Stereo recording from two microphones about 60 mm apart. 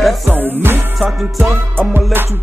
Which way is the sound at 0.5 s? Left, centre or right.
Right.